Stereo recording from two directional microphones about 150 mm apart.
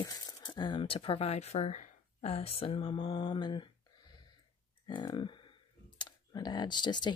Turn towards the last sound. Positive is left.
turn(degrees=30)  # may be behind; listen again after turning